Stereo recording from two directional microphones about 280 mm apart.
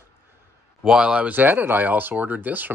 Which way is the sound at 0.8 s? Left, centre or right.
Centre.